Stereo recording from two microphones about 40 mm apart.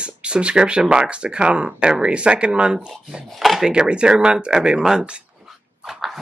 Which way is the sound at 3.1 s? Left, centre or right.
Centre.